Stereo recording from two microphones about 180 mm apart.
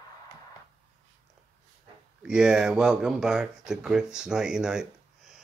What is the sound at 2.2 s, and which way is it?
Speech, 5° right (ahead or behind).